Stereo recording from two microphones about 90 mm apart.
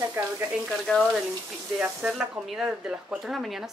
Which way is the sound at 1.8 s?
10° right (ahead or behind).